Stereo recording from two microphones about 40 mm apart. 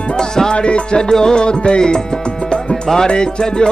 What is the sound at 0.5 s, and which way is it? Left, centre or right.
Music, left.